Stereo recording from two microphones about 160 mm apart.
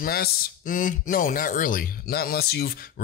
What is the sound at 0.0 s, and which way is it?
Speech, 70° left (ahead or behind).